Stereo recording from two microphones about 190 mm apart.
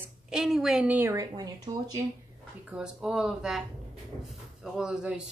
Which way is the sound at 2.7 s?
5° right (ahead or behind).